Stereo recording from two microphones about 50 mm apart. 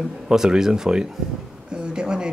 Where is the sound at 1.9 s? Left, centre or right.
Centre.